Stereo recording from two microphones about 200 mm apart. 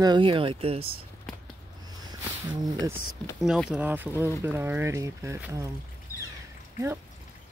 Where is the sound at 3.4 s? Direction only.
5° right (ahead or behind).